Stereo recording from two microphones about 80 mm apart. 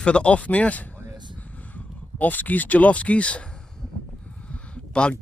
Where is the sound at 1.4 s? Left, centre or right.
Centre.